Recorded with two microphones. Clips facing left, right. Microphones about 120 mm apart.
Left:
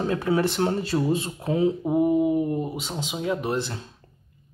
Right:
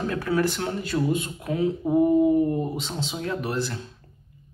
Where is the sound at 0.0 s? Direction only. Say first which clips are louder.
Left 1 dB; 25° left (ahead or behind).